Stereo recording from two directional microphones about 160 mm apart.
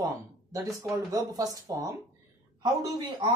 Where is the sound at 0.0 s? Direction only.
20° right (ahead or behind).